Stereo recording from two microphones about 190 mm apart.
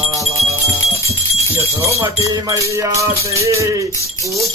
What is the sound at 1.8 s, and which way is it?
Music, 15° right (ahead or behind).